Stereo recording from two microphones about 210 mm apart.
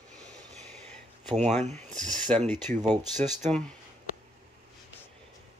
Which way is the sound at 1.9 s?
Centre (ahead or behind).